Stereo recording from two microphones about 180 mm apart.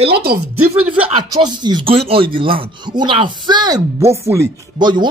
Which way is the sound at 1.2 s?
25° right (ahead or behind).